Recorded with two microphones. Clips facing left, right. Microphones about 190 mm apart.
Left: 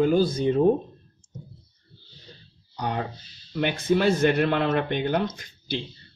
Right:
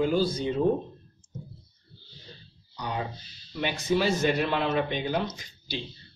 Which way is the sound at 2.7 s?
55° left (ahead or behind).